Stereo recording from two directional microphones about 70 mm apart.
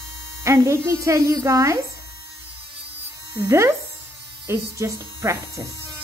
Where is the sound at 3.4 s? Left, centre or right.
Right.